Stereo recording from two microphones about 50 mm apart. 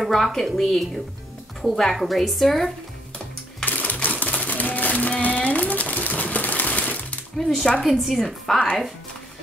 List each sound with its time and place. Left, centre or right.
0.0 s a woman's voice: centre
2.0 s a woman's voice: centre
3.6 s typewriter: left
7.3 s a woman's voice: centre